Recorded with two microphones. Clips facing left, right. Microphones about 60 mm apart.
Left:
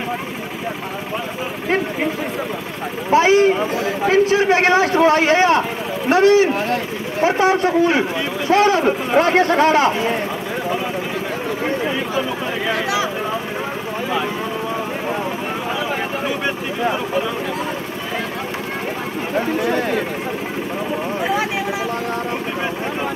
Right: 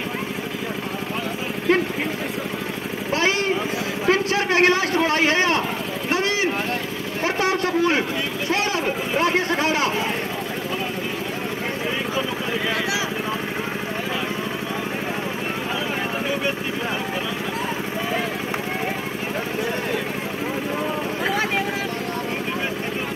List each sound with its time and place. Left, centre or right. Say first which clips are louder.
3.1 s vehicle: left 9 dB; left
4.1 s a man's voice: left 5 dB; left
7.2 s a man's voice: left 6 dB; left